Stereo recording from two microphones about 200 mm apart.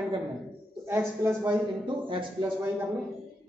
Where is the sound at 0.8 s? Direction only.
10° right (ahead or behind).